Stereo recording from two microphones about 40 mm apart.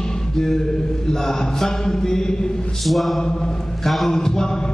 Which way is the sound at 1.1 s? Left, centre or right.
Centre.